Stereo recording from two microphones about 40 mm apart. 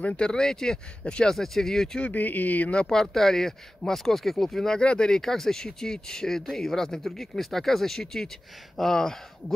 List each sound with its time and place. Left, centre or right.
0.3 s speech: centre
2.0 s speech: left
2.9 s speech: centre
4.7 s speech: left
5.2 s speech: centre